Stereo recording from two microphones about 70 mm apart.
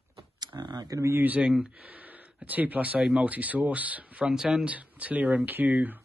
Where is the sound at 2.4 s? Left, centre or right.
Right.